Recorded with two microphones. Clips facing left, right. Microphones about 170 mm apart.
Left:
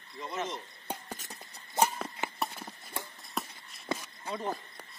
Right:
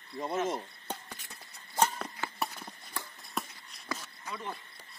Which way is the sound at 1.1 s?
45° left (ahead or behind).